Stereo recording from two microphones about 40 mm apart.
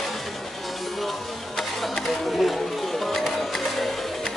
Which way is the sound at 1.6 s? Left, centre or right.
Centre.